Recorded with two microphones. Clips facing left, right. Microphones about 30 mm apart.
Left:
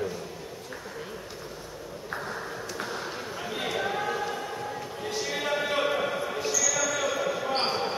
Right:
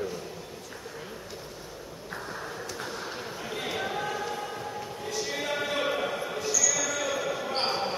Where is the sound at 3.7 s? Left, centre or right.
Centre.